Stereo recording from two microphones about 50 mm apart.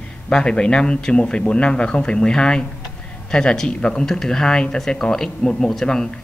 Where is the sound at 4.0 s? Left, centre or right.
Centre.